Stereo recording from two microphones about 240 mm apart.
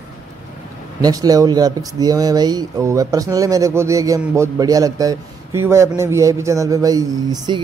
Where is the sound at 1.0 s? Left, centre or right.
Centre.